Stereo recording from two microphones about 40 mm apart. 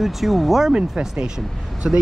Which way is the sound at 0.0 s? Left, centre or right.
Centre.